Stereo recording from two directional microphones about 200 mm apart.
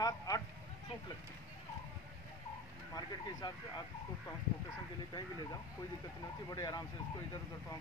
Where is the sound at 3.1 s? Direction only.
20° left (ahead or behind).